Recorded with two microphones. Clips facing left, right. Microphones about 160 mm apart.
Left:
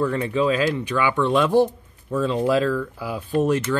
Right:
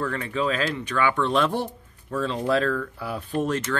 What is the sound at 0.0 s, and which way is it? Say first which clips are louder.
Speech: left 5 dB; 15° left (ahead or behind).